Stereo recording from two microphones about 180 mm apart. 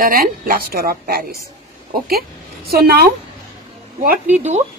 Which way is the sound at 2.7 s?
55° right (ahead or behind).